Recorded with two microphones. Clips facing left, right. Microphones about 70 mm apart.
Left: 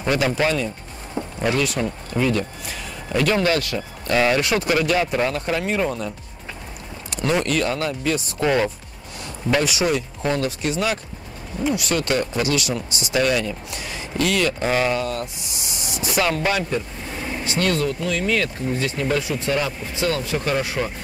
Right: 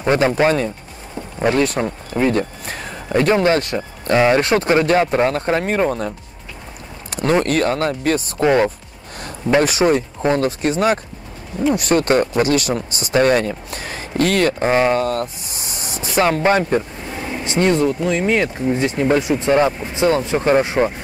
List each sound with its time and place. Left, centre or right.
0.1 s speech: right
3.1 s speech: right
8.4 s speech: right
9.6 s speech: right
17.2 s vehicle: centre
17.5 s speech: right